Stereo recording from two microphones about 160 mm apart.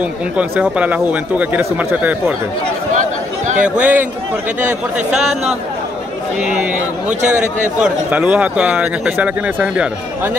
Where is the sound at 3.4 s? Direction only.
50° right (ahead or behind).